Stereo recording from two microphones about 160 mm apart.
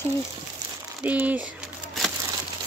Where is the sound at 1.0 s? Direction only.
10° right (ahead or behind).